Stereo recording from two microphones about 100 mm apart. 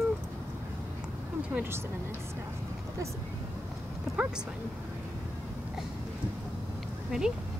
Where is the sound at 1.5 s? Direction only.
15° right (ahead or behind).